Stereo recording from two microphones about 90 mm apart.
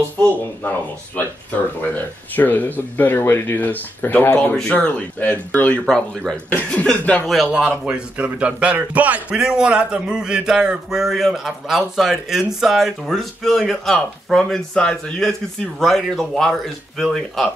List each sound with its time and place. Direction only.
2.3 s speech: 20° left (ahead or behind)
5.9 s speech: 5° left (ahead or behind)
7.2 s a man's voice: 5° right (ahead or behind)